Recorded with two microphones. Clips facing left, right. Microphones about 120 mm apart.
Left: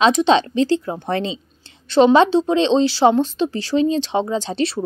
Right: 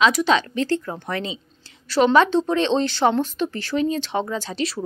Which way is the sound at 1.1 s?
30° left (ahead or behind).